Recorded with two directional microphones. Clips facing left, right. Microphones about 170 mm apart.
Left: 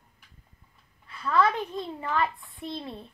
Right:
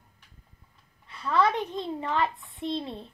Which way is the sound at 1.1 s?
25° right (ahead or behind).